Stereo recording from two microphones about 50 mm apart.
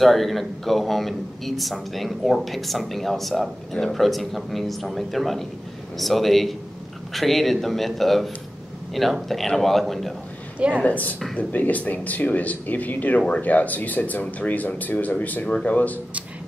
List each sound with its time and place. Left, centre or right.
0.0 s a man's voice: centre
10.8 s speech: left